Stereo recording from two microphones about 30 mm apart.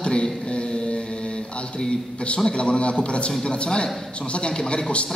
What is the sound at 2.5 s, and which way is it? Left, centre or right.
A man's voice, left.